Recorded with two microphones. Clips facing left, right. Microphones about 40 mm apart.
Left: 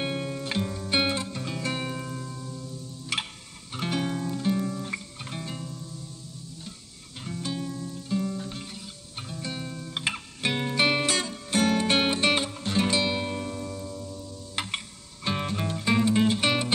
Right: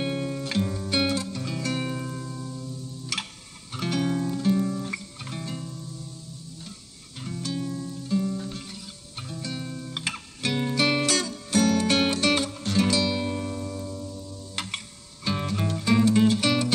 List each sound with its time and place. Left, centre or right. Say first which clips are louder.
0.0 s music: right 2 dB; centre
0.6 s music: right 5 dB; centre
0.8 s music: left 3 dB; left
1.8 s music: right 2 dB; centre
2.3 s music: right 2 dB; centre
3.1 s music: left 3 dB; left
4.0 s music: right 3 dB; centre
5.2 s music: right 1 dB; centre
7.2 s music: right 1 dB; centre
9.7 s music: right 2 dB; centre
10.4 s music: even; left
13.2 s music: right 2 dB; centre
14.5 s music: left 2 dB; left
15.5 s music: right 3 dB; centre